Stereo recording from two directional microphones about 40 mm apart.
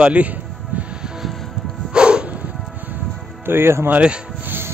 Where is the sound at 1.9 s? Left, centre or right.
Right.